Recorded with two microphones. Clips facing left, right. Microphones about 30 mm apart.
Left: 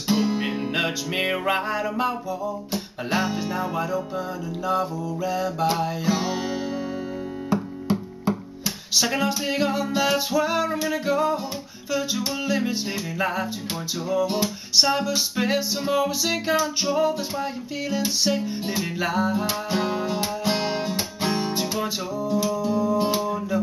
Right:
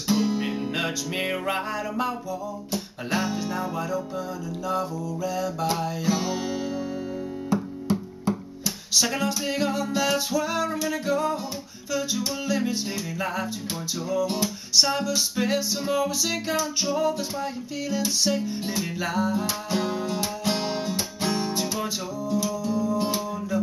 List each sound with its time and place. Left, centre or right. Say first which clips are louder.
0.1 s music: left 1 dB; centre